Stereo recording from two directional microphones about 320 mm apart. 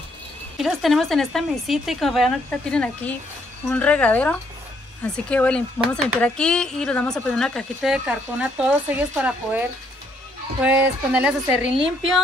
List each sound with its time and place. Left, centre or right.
0.6 s speech: centre